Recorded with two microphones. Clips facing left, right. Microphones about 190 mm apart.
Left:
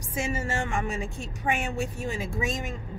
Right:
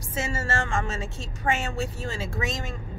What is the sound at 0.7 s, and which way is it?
Speech, 15° left (ahead or behind).